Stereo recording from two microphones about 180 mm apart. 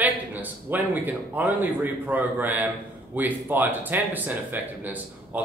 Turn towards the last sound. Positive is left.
turn(degrees=-10)  # may be behind; listen again after turning